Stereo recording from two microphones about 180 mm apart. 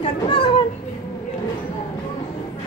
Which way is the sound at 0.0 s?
30° left (ahead or behind).